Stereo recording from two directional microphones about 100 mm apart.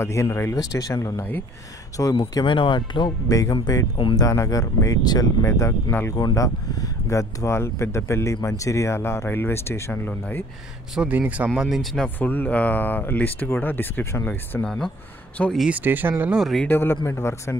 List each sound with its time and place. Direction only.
0.0 s speech: 30° left (ahead or behind)
2.1 s speech: 50° left (ahead or behind)
3.3 s speech: 35° left (ahead or behind)
5.4 s speech: 25° left (ahead or behind)
6.1 s speech: 40° left (ahead or behind)
11.0 s a man's voice: 15° right (ahead or behind)
11.6 s speech: centre (ahead or behind)
12.2 s speech: 20° left (ahead or behind)
15.7 s speech: 20° right (ahead or behind)
16.3 s speech: centre (ahead or behind)
16.6 s speech: 20° left (ahead or behind)